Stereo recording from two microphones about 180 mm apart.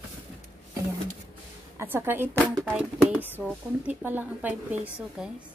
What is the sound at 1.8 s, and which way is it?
Speech, 10° right (ahead or behind).